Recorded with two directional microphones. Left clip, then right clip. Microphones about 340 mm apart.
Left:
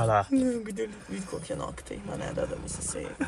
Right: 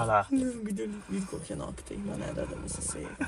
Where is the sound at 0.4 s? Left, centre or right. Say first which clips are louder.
Left 4 dB; centre.